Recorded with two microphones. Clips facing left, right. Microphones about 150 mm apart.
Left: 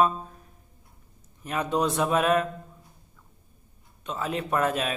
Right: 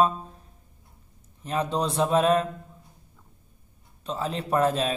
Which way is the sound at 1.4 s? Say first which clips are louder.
Even; 30° right (ahead or behind).